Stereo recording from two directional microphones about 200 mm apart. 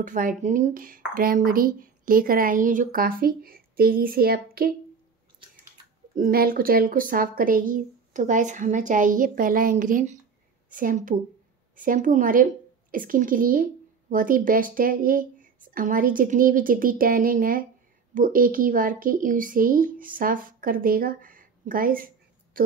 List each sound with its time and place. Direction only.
0.0 s speech: 40° right (ahead or behind)
6.1 s a woman's voice: 45° right (ahead or behind)